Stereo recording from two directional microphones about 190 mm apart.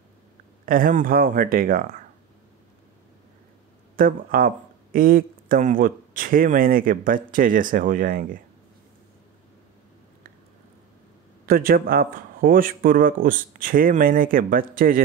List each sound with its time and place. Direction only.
0.7 s speech: 45° right (ahead or behind)
3.9 s speech: 50° right (ahead or behind)
11.4 s speech: 50° right (ahead or behind)